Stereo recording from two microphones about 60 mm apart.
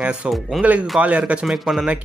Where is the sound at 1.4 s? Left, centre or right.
Centre.